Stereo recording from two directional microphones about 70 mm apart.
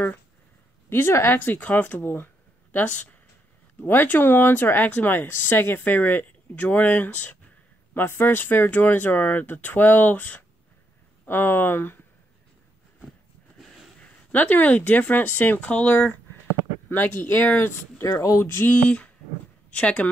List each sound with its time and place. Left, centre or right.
0.8 s speech: left
14.0 s speech: left
18.4 s a sound: left
18.9 s a woman's voice: centre